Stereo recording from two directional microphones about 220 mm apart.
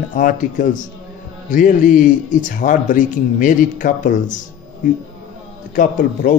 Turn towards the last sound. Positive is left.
turn(degrees=40)  # may be behind; listen again after turning